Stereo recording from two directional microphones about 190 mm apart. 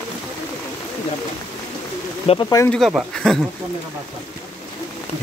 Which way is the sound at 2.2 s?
30° left (ahead or behind).